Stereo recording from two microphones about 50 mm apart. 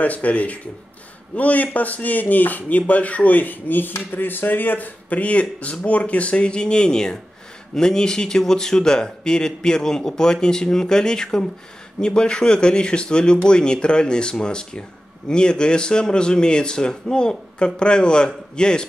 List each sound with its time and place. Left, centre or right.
0.0 s a man's voice: left; by 18.9 s centre